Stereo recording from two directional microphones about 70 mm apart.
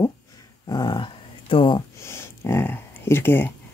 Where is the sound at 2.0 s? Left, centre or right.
Left.